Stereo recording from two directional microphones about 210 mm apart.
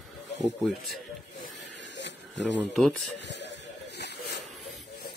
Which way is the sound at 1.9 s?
60° left (ahead or behind).